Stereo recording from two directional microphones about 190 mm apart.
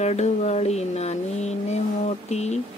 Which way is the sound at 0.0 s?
35° left (ahead or behind).